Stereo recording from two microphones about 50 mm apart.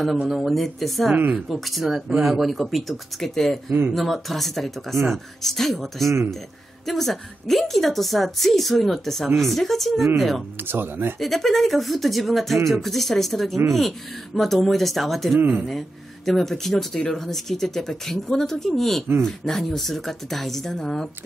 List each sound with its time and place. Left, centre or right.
0.3 s a woman's voice: centre
1.1 s speech: right
1.5 s a woman's voice: centre
10.6 s speech: right
11.1 s a woman's voice: centre